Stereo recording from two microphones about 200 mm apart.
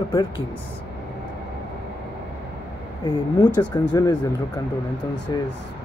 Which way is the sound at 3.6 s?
20° left (ahead or behind).